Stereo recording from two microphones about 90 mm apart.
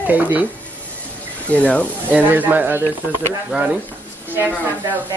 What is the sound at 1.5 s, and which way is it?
Speech, 15° left (ahead or behind).